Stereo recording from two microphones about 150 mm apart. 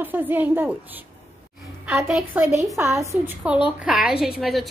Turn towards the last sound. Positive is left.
turn(degrees=0)  # may be behind; listen again after turning